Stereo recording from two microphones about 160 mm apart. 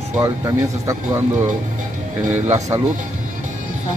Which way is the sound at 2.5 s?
20° right (ahead or behind).